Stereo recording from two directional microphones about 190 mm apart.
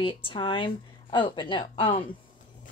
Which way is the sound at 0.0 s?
25° left (ahead or behind).